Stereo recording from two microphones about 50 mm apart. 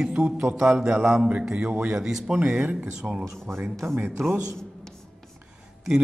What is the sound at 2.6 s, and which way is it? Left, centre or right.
Speech, right.